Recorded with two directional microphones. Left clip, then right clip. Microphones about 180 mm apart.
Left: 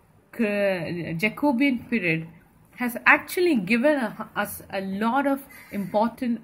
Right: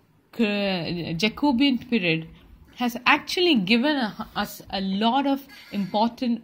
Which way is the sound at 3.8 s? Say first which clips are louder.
Left 2 dB; 30° right (ahead or behind).